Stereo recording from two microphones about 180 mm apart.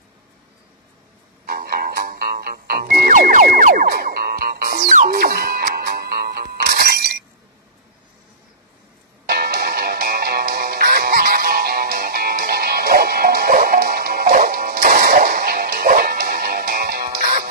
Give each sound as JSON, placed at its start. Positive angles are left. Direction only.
{"t": 1.4, "sound": "music", "side_deg": -55}
{"t": 9.2, "sound": "music", "side_deg": -60}